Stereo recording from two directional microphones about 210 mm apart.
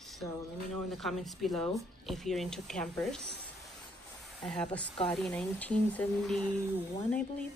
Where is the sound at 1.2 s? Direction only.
Centre (ahead or behind).